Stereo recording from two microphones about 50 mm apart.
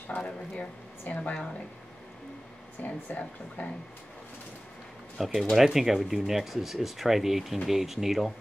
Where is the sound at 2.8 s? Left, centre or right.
Left.